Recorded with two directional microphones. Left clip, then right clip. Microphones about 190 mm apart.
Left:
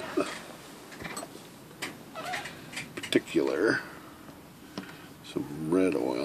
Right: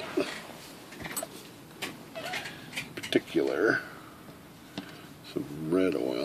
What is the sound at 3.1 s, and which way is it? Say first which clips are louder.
Speech: left 1 dB; 15° left (ahead or behind).